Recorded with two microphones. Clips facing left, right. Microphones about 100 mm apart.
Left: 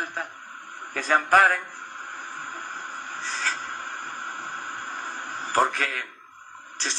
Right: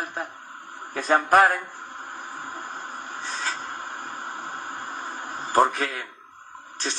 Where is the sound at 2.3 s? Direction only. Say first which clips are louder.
Right 1 dB; 20° right (ahead or behind).